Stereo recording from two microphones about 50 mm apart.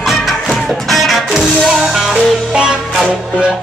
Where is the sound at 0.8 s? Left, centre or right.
Centre.